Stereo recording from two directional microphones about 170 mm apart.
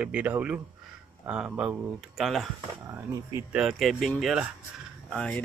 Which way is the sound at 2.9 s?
15° right (ahead or behind).